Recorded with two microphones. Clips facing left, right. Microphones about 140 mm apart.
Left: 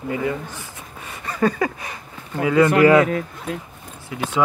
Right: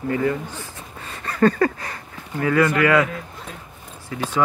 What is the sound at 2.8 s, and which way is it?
Speech, 30° left (ahead or behind).